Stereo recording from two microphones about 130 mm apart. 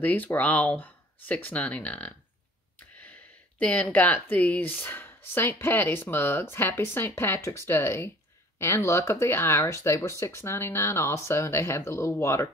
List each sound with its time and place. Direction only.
0.0 s speech: 15° left (ahead or behind)